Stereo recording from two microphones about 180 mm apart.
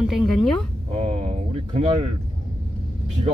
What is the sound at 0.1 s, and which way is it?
Speech, centre (ahead or behind).